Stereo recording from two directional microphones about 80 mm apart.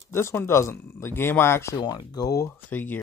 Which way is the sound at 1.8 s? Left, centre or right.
Left.